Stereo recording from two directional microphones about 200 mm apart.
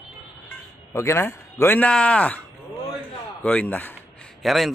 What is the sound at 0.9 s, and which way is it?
Speech, 15° left (ahead or behind).